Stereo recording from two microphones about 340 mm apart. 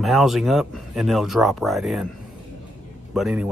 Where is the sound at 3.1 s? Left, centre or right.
Centre.